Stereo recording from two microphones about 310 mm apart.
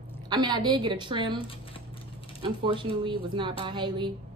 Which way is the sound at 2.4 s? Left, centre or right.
Centre.